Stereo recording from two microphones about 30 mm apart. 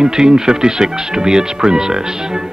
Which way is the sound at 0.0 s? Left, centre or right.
Right.